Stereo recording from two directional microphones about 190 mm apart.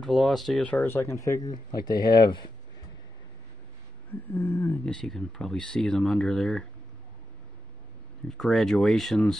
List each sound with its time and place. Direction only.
0.0 s speech: centre (ahead or behind); by 2.5 s 25° left (ahead or behind)
4.3 s speech: 10° left (ahead or behind)
8.3 s speech: 5° left (ahead or behind)